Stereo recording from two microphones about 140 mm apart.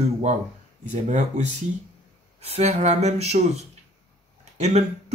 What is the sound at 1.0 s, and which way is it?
Speech, 60° right (ahead or behind).